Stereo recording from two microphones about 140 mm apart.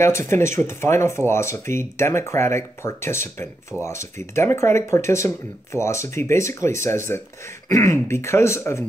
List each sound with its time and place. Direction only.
0.0 s speech: 20° left (ahead or behind)